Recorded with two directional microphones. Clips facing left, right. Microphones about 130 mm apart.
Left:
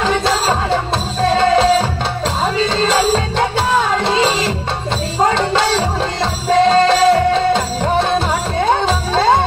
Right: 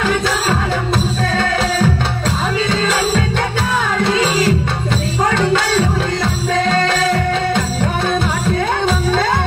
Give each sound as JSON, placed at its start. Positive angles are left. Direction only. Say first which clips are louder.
{"t": 1.2, "sound": "music", "louder": "left 11 dB", "side_deg": 30}
{"t": 8.5, "sound": "music", "louder": "left 5 dB", "side_deg": 30}